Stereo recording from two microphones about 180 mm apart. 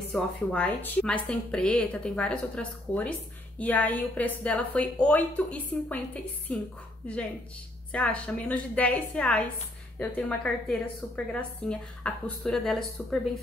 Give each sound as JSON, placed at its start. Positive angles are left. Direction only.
{"t": 0.1, "sound": "a woman's voice", "side_deg": 5}
{"t": 7.9, "sound": "a woman's voice", "side_deg": 5}